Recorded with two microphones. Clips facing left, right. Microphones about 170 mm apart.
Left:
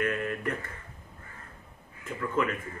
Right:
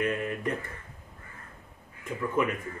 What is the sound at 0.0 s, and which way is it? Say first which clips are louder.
Speech: right 1 dB; 20° right (ahead or behind).